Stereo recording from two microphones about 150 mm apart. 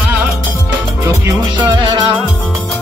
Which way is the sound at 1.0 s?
15° right (ahead or behind).